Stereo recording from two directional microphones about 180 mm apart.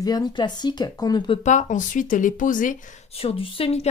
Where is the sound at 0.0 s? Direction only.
20° left (ahead or behind).